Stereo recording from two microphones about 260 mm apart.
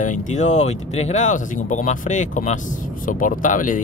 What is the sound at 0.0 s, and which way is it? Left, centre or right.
Speech, left.